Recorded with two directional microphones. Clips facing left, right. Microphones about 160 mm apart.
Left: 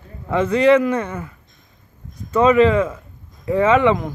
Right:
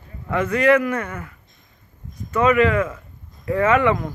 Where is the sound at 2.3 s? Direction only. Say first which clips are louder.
Left 3 dB; 30° left (ahead or behind).